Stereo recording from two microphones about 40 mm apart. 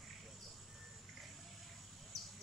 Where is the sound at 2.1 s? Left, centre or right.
Centre.